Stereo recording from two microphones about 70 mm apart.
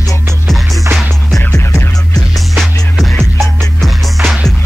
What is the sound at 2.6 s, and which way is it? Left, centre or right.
Music, centre.